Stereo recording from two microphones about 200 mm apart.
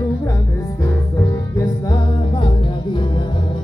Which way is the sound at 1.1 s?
15° left (ahead or behind).